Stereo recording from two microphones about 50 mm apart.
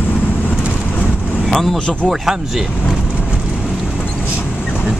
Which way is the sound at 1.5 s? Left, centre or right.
Centre.